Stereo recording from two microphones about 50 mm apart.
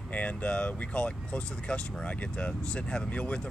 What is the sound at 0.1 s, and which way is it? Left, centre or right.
Speech, left.